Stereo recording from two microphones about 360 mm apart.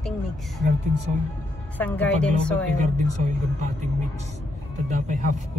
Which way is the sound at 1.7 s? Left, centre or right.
Centre.